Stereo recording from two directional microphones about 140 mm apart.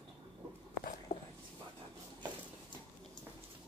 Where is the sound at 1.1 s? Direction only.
55° left (ahead or behind).